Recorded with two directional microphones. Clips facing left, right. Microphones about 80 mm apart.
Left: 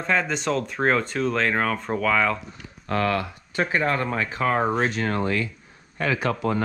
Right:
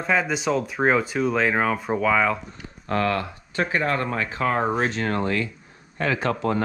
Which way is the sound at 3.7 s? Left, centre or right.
Left.